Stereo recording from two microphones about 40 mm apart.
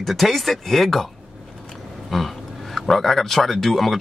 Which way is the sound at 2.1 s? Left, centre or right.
Centre.